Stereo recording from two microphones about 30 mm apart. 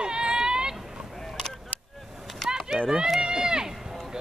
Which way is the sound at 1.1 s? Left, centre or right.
Centre.